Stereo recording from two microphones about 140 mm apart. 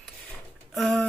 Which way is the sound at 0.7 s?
5° left (ahead or behind).